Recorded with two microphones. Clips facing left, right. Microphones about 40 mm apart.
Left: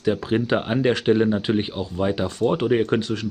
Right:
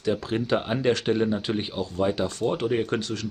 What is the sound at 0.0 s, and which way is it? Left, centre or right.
Speech, centre.